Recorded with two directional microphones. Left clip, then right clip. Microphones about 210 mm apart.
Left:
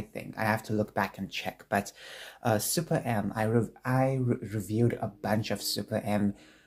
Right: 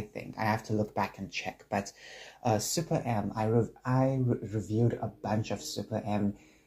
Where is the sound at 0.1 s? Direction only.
30° left (ahead or behind).